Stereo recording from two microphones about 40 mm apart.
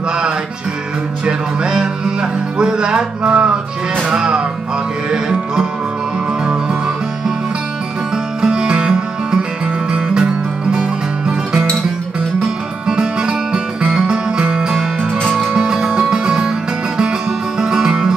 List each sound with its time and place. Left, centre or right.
1.2 s music: centre
2.6 s speech: right
4.1 s music: centre
8.4 s music: right
12.8 s music: centre